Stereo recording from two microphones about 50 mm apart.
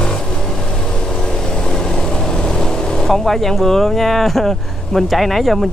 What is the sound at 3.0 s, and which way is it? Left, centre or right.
Speech, centre.